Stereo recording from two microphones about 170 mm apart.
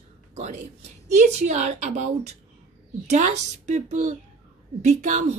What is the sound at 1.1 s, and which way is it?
A woman's voice, 40° right (ahead or behind).